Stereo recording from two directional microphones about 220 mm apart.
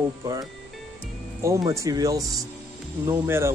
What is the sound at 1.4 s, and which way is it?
Speech, 15° right (ahead or behind).